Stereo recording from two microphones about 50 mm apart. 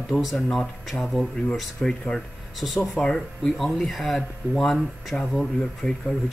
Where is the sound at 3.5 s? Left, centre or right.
Centre.